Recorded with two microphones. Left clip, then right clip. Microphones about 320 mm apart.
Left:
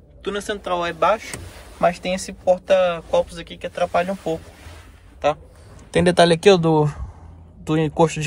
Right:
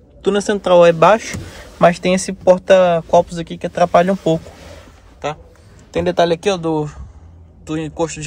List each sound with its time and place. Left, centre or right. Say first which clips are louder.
0.2 s speech: right 9 dB; centre
5.9 s a man's voice: even; left